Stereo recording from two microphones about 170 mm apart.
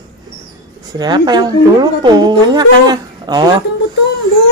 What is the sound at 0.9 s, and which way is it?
Speech, 25° right (ahead or behind).